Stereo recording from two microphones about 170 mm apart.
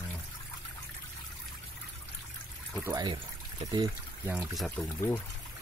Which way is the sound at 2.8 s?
25° right (ahead or behind).